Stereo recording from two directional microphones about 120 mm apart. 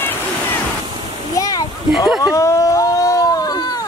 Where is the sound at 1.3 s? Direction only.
30° left (ahead or behind).